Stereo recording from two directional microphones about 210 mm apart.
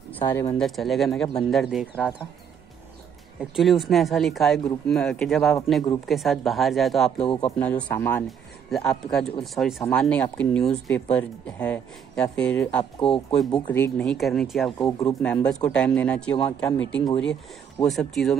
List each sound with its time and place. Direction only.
0.2 s speech: 20° left (ahead or behind)
0.6 s speech: centre (ahead or behind)
3.3 s speech: centre (ahead or behind)
7.2 s speech: 25° left (ahead or behind)
7.5 s speech: 10° left (ahead or behind)
14.8 s speech: 15° left (ahead or behind)